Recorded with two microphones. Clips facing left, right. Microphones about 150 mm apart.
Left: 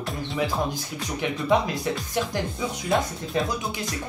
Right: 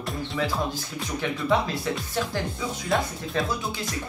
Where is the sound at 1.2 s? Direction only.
20° left (ahead or behind).